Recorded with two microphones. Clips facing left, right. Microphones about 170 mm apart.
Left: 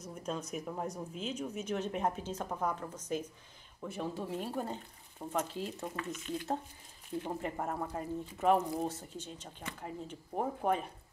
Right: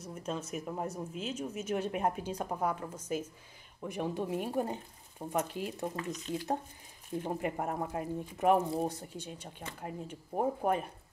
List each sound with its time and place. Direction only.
0.0 s speech: 5° right (ahead or behind)
5.9 s speech: 35° right (ahead or behind)
7.2 s speech: 15° right (ahead or behind)